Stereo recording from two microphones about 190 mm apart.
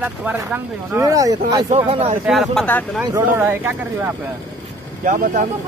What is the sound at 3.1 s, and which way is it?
Speech, 15° right (ahead or behind).